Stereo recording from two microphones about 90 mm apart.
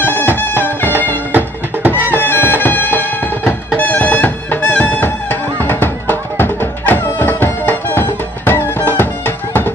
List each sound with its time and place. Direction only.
0.0 s music: 25° left (ahead or behind)
1.3 s music: 20° right (ahead or behind)
2.1 s music: 25° left (ahead or behind)